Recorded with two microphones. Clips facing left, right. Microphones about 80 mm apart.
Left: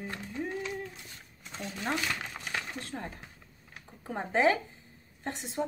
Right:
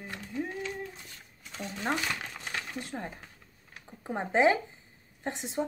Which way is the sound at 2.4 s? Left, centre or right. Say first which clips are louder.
Even; left.